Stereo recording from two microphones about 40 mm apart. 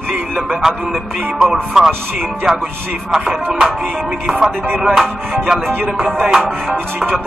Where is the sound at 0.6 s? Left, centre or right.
Centre.